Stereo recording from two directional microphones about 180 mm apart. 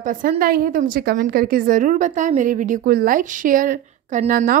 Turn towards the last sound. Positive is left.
turn(degrees=-50)  # may be behind; listen again after turning